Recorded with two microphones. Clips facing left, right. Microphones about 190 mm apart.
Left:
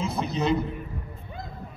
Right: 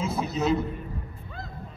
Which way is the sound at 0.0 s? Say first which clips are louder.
Even; 5° right (ahead or behind).